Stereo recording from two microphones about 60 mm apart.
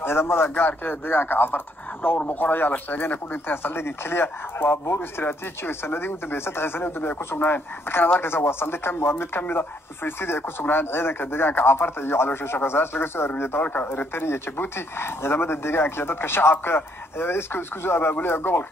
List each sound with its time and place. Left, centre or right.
0.0 s speech: left